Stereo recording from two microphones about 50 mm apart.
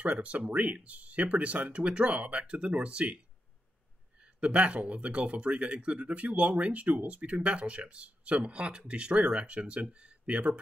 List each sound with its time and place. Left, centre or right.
0.0 s speech: right
4.2 s speech: right